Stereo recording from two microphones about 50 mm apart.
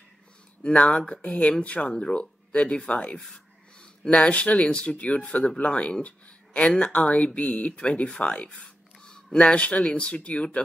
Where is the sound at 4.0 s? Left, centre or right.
Centre.